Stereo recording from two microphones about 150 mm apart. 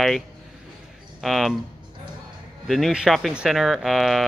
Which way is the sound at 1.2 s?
Centre (ahead or behind).